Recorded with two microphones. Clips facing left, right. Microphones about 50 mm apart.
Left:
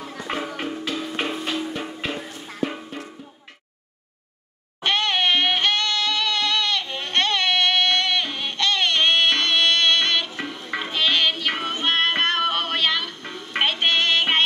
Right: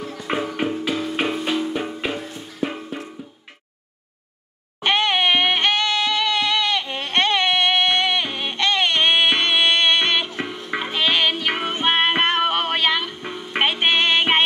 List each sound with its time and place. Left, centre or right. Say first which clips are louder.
0.6 s music: right 5 dB; centre
4.8 s music: right 3 dB; centre